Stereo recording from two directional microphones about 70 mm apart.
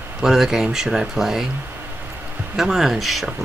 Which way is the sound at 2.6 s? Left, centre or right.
Centre.